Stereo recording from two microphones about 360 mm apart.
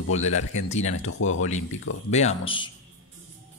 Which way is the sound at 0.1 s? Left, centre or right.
Centre.